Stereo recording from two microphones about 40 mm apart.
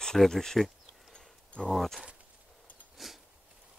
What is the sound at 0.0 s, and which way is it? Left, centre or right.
Speech, centre.